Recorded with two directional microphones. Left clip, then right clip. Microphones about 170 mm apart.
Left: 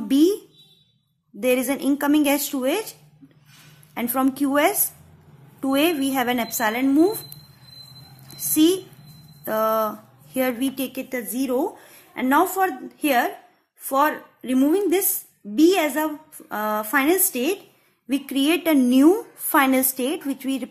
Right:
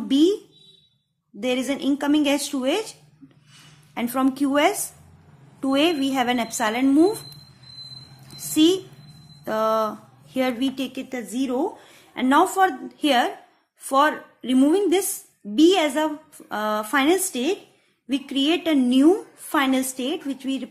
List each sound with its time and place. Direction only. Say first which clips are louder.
0.1 s a woman's voice: left 1 dB; 10° left (ahead or behind)
1.4 s a woman's voice: left 3 dB; 10° left (ahead or behind)
3.9 s speech: even; centre (ahead or behind)
8.3 s a sound: even; centre (ahead or behind)
9.4 s speech: even; centre (ahead or behind)
18.0 s a woman's voice: left 1 dB; 15° left (ahead or behind)